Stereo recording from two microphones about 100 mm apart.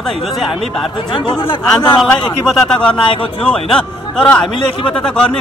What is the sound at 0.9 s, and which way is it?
Speech, 60° left (ahead or behind).